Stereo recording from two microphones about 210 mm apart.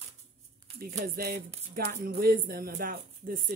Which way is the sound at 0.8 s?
45° right (ahead or behind).